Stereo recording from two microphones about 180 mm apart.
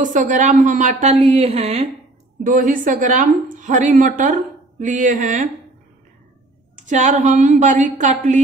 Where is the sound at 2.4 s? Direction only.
50° right (ahead or behind).